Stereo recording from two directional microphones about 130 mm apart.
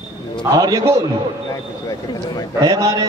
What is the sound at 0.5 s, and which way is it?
Speech, 30° right (ahead or behind).